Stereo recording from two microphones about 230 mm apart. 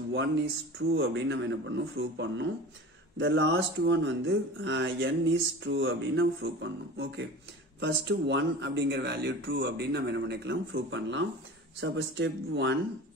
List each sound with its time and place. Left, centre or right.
0.7 s speech: right